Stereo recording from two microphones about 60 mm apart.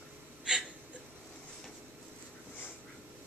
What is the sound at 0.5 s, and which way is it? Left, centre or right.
Gasp, centre.